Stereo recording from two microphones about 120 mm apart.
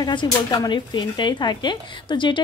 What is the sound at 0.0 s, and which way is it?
Speech, 40° left (ahead or behind).